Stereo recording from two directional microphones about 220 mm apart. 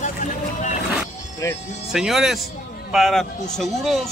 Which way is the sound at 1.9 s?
Centre (ahead or behind).